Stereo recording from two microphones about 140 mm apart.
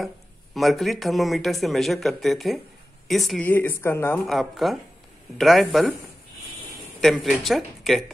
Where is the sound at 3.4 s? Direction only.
15° left (ahead or behind).